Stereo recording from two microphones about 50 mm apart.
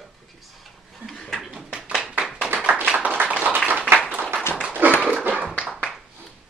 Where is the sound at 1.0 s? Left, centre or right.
Centre.